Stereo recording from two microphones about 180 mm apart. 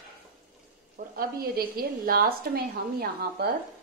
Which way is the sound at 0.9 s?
55° right (ahead or behind).